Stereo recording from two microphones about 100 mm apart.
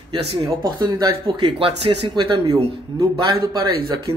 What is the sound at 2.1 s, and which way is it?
Speech, 50° right (ahead or behind).